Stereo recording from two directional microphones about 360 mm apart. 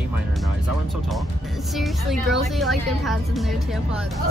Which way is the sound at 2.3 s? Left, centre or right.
Centre.